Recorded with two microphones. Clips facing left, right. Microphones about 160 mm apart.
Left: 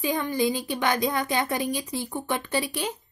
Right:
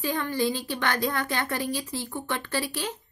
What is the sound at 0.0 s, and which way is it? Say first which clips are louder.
A woman's voice: left 2 dB; 15° left (ahead or behind).